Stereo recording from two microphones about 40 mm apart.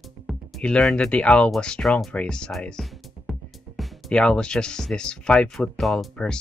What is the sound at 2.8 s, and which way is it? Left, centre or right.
Speech, centre.